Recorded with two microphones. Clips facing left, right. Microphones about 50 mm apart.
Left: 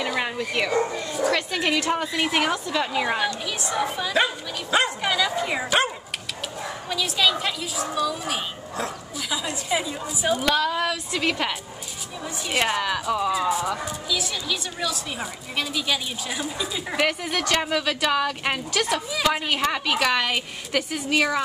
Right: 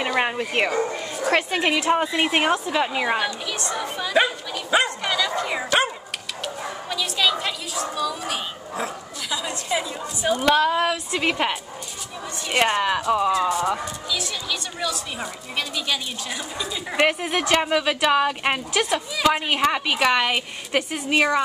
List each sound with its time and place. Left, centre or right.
0.2 s a woman's voice: right
2.0 s a woman's voice: right
3.4 s speech: centre
4.8 s dog: centre
6.4 s speech: centre
10.4 s a woman's voice: centre
12.4 s speech: centre
13.1 s a woman's voice: centre
13.4 s speech: centre
17.0 s a woman's voice: centre
18.7 s a woman's voice: centre